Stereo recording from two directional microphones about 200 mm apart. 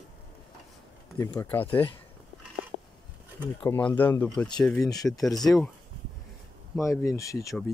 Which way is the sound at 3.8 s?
10° left (ahead or behind).